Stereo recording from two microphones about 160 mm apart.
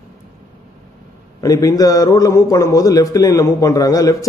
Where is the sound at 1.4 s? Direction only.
20° left (ahead or behind).